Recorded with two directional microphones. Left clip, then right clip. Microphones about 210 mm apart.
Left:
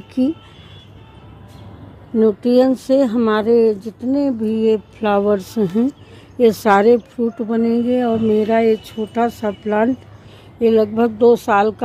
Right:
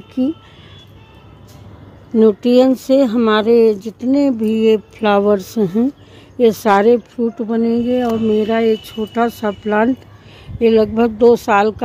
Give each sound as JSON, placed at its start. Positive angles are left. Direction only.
{"t": 2.1, "sound": "speech", "side_deg": -20}